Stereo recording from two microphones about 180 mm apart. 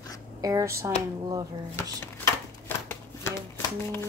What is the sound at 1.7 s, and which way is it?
Shuffling cards, 15° left (ahead or behind).